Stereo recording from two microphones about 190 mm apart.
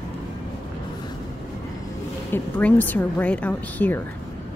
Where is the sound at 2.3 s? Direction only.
10° left (ahead or behind).